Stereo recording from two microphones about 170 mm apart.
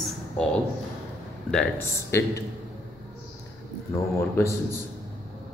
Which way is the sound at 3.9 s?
15° left (ahead or behind).